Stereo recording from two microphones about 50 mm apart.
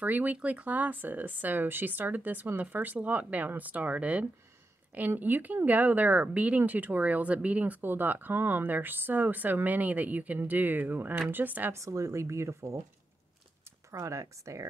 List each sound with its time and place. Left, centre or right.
0.0 s speech: right
5.1 s speech: right
11.7 s speech: right
13.9 s speech: right